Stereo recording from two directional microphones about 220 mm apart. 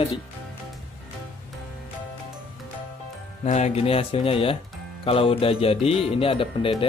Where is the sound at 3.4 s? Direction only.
30° left (ahead or behind).